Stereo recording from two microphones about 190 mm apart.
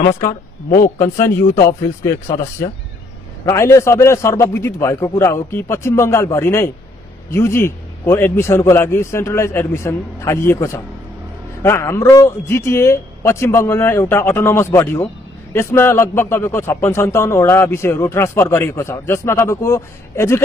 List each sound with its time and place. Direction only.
0.7 s speech: 45° left (ahead or behind)
1.1 s a man's voice: 15° left (ahead or behind)